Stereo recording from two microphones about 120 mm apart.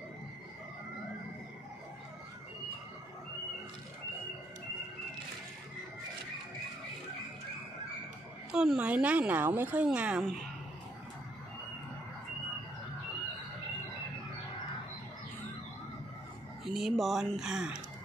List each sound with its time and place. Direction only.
8.5 s a woman's voice: 5° right (ahead or behind)
16.6 s speech: centre (ahead or behind)